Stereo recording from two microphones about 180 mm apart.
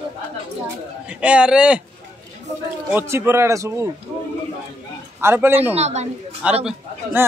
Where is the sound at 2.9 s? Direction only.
15° right (ahead or behind).